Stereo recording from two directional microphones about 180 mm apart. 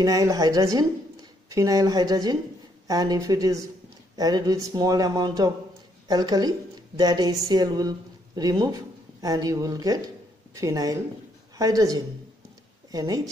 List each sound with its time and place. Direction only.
0.0 s speech: 20° right (ahead or behind)